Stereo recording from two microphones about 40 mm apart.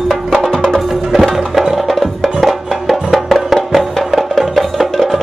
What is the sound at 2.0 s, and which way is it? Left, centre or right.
Music, centre.